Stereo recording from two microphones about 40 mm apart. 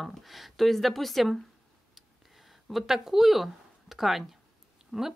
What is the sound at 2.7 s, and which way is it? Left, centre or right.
A woman's voice, centre.